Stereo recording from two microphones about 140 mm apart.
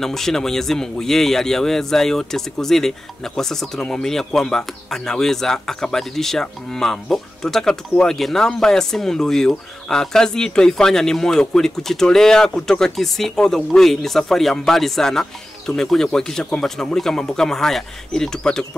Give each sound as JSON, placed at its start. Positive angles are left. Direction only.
{"t": 0.0, "sound": "speech", "side_deg": 5}